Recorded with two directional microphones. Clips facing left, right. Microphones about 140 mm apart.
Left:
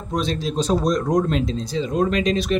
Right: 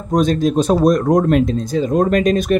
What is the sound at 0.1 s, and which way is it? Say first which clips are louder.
Speech: right 9 dB; 50° right (ahead or behind).